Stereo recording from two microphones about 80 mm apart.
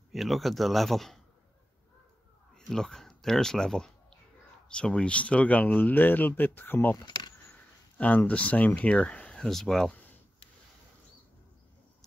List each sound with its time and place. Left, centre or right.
0.1 s a man's voice: centre
2.5 s speech: centre; by 7.0 s left
7.1 s keys jangling: left
8.0 s speech: centre